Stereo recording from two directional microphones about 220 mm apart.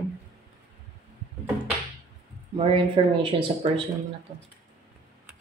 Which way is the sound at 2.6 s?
20° right (ahead or behind).